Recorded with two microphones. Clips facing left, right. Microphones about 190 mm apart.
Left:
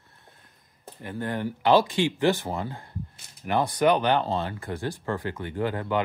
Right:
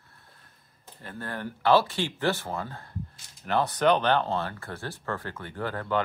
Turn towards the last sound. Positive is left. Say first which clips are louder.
# left 2 dB
turn(degrees=15)  # may be behind; listen again after turning